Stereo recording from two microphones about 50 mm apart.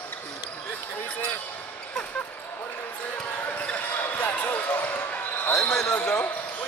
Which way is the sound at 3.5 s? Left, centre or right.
Left.